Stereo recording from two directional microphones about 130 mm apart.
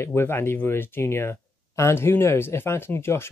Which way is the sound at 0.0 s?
20° left (ahead or behind).